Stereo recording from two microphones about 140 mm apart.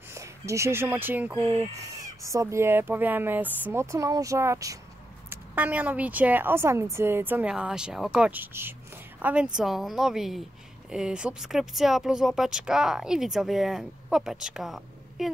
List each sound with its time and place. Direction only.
0.1 s speech: 20° right (ahead or behind); by 15.3 s centre (ahead or behind)